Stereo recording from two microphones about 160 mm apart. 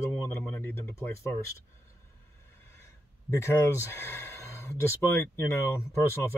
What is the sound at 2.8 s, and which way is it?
Speech, 20° left (ahead or behind).